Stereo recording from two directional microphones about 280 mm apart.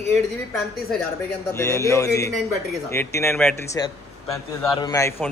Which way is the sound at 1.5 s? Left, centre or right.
Centre.